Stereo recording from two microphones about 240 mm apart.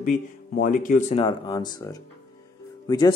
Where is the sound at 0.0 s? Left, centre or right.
Left.